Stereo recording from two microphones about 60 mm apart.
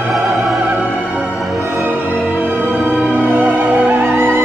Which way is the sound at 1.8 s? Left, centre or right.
Right.